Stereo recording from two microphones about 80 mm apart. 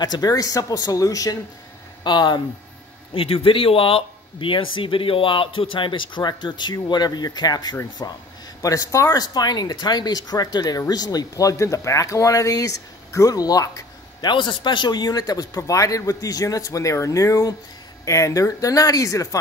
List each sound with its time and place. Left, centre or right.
0.0 s speech: left
2.0 s speech: left
3.4 s speech: left
8.0 s speech: left
14.2 s speech: left